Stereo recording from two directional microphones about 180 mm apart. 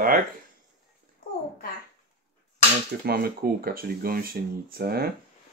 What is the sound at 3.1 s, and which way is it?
Speech, 55° right (ahead or behind).